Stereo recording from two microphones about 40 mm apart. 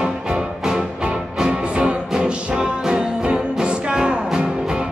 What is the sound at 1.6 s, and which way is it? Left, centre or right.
Music, right.